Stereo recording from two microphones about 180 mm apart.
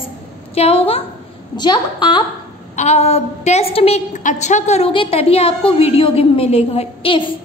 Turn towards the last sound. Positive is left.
turn(degrees=30)  # may be behind; listen again after turning